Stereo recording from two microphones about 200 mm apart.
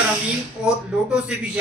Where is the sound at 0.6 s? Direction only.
5° right (ahead or behind).